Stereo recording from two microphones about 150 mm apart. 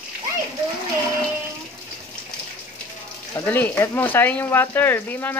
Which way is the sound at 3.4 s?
10° left (ahead or behind).